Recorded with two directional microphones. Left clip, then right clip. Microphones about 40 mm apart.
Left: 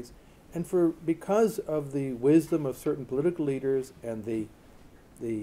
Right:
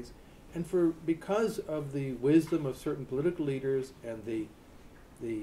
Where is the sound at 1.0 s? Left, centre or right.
Left.